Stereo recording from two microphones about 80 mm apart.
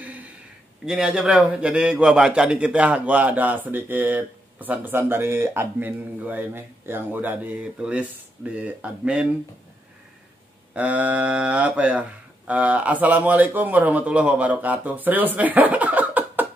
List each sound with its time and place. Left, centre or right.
0.8 s a man's voice: centre
10.7 s a man's voice: centre